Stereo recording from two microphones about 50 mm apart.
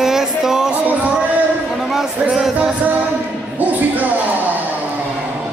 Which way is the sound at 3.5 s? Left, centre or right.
Right.